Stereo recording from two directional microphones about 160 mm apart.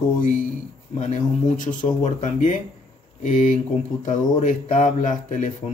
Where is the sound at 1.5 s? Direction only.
50° left (ahead or behind).